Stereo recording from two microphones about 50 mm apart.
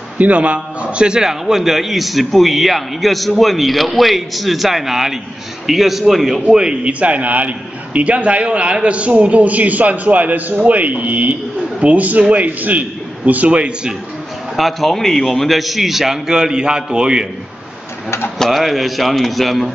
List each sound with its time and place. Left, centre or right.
0.2 s a man's voice: right; by 6.4 s centre
6.5 s a man's voice: centre
14.6 s a man's voice: centre
18.5 s a man's voice: centre